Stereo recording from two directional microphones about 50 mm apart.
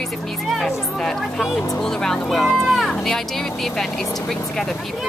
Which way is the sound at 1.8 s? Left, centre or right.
Centre.